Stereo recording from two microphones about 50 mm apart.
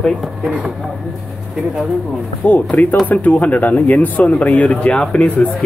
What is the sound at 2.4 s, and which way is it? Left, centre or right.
Speech, left.